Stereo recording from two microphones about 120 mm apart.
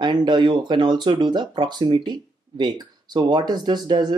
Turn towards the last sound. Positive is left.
turn(degrees=-35)  # may be behind; listen again after turning